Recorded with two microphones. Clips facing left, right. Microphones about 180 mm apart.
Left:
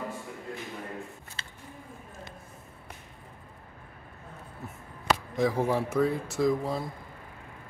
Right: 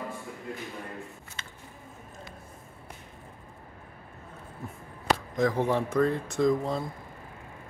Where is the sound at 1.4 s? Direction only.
30° left (ahead or behind).